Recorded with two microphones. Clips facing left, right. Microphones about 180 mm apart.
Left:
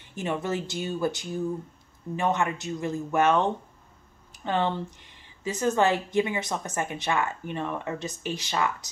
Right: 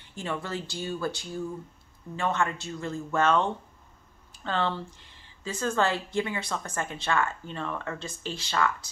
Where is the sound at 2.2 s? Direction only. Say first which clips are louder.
Left 2 dB; 20° left (ahead or behind).